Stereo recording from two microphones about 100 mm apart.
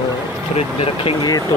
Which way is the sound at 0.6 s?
75° left (ahead or behind).